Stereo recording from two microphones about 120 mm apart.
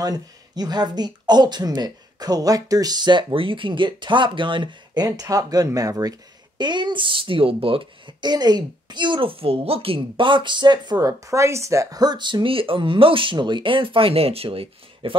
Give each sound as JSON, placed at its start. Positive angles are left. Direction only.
{"t": 0.0, "sound": "speech", "side_deg": -35}